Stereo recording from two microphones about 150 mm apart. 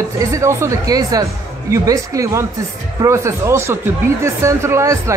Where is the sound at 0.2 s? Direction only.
20° right (ahead or behind).